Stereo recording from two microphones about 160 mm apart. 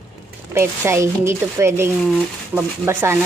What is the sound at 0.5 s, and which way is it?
Speech, 15° right (ahead or behind).